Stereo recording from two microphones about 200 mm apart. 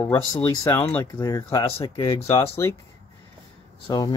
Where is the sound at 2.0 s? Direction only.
30° left (ahead or behind).